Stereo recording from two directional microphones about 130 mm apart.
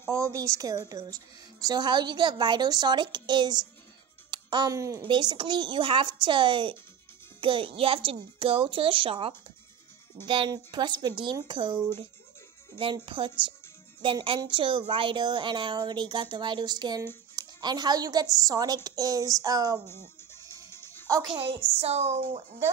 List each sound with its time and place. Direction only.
0.0 s a woman's voice: 25° right (ahead or behind)
4.3 s music: 35° right (ahead or behind)
4.7 s a sound: 25° right (ahead or behind)
5.0 s a woman's voice: 35° right (ahead or behind)
18.9 s a sound: 30° right (ahead or behind)
19.9 s music: 20° left (ahead or behind)
21.7 s a woman's voice: 55° right (ahead or behind)